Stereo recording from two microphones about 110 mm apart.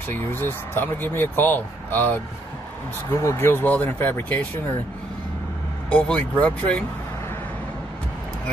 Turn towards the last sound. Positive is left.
turn(degrees=20)  # may be behind; listen again after turning